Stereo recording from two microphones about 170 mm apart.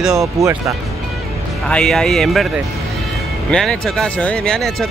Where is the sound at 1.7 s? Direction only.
5° left (ahead or behind).